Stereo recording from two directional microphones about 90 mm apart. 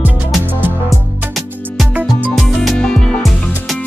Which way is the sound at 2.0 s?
Centre (ahead or behind).